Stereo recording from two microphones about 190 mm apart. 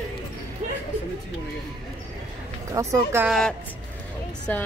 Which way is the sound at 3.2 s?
Centre (ahead or behind).